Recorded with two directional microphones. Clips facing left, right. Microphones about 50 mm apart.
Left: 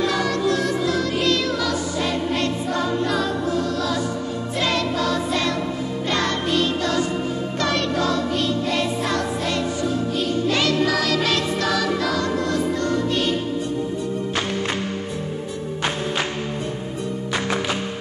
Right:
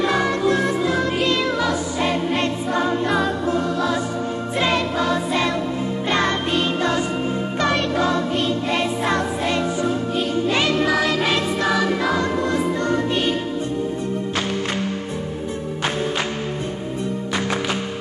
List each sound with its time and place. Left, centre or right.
0.0 s music: right